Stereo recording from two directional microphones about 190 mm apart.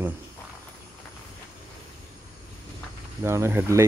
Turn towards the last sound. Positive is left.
turn(degrees=-15)  # may be behind; listen again after turning